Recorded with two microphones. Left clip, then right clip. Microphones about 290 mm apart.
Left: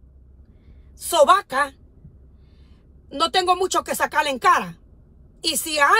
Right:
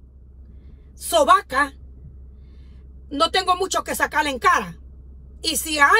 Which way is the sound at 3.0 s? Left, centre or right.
Centre.